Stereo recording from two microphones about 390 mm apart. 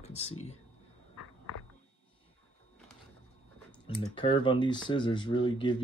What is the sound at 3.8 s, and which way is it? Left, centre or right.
Speech, centre.